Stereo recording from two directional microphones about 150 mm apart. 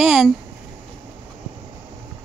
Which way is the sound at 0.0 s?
Centre (ahead or behind).